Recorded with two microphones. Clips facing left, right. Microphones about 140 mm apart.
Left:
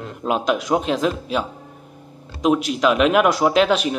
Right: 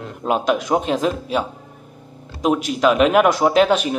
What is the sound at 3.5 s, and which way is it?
Speech, 45° right (ahead or behind).